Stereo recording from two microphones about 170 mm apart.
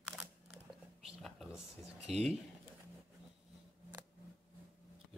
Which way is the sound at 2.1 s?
Centre (ahead or behind).